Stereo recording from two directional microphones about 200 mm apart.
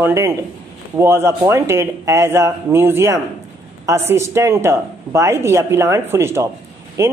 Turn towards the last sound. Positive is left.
turn(degrees=-15)  # may be behind; listen again after turning